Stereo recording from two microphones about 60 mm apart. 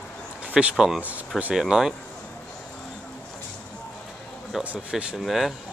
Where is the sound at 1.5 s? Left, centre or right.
Centre.